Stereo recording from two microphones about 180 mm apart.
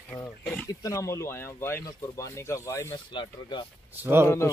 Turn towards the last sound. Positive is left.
turn(degrees=-10)  # may be behind; listen again after turning